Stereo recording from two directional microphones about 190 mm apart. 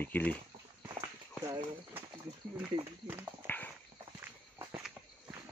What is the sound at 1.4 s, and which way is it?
Clip-clop, 20° right (ahead or behind).